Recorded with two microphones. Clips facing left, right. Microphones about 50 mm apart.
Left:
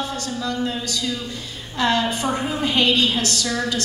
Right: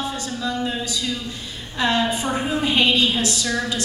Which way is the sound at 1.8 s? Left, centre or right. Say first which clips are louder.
Even; centre.